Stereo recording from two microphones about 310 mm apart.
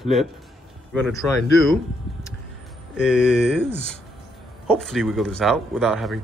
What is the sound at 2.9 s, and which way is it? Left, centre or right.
Speech, centre.